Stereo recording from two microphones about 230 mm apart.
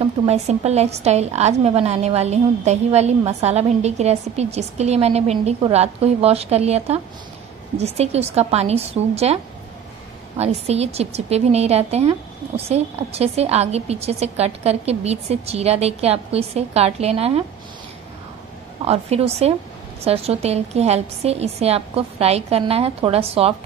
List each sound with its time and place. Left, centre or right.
0.0 s a woman's voice: right
18.9 s a woman's voice: right